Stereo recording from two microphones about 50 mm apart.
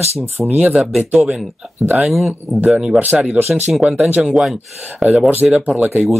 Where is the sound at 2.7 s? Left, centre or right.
Centre.